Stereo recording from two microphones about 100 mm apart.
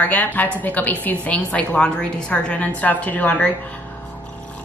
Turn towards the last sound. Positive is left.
turn(degrees=15)  # may be behind; listen again after turning